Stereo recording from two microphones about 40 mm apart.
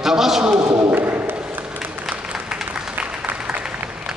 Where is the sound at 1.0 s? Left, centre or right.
Right.